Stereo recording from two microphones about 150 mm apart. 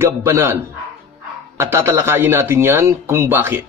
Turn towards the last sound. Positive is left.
turn(degrees=-15)  # may be behind; listen again after turning